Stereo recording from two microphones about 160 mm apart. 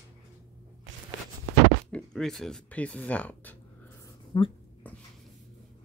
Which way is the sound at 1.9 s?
5° left (ahead or behind).